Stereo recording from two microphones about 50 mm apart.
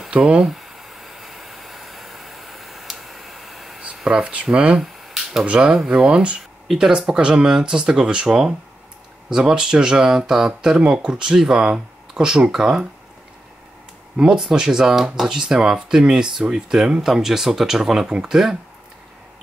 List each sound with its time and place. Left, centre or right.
0.1 s speech: centre
0.5 s a sound: centre
3.9 s speech: centre
4.7 s a sound: centre
5.4 s speech: right
6.7 s speech: centre
7.2 s speech: right
14.1 s speech: centre